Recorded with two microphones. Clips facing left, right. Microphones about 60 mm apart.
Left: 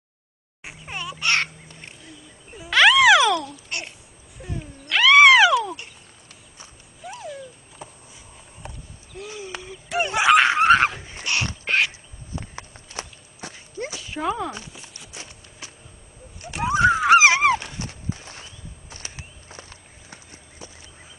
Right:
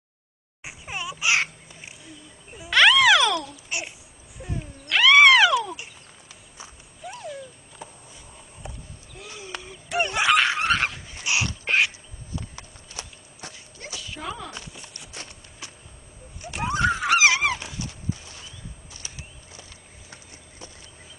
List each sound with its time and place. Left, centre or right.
0.7 s speech: centre
2.5 s babbling: centre
4.4 s a sound: centre
7.0 s a sound: centre
9.1 s a sound: centre
10.3 s screaming: left
10.6 s dog: left
11.6 s crow: centre
12.4 s horse: left
14.5 s horse: centre
16.5 s a sound: centre
17.1 s dog: left
17.6 s horse: left